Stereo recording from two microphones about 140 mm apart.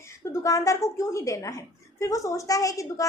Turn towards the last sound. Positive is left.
turn(degrees=25)  # may be behind; listen again after turning